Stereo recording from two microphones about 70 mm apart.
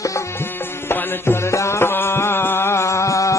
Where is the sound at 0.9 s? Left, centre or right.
Left.